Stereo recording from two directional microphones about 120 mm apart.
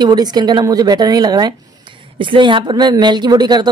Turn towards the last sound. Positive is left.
turn(degrees=-35)  # may be behind; listen again after turning